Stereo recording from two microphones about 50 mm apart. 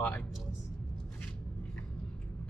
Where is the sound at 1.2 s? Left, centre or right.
Left.